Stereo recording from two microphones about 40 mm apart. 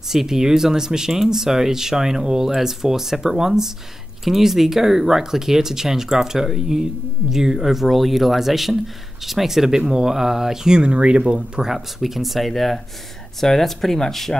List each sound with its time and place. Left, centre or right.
0.1 s speech: centre
10.8 s speech: right
11.6 s speech: centre